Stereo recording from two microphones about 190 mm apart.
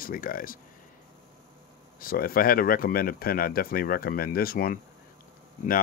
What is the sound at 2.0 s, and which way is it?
Speech, 50° left (ahead or behind).